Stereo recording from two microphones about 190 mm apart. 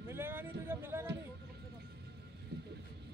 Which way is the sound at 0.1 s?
10° right (ahead or behind).